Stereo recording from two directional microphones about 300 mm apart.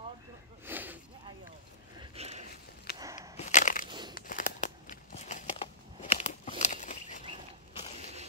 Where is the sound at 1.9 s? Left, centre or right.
Right.